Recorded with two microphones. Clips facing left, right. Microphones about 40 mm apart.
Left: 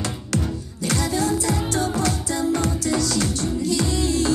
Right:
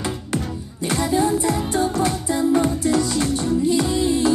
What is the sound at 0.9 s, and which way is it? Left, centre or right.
Music, centre.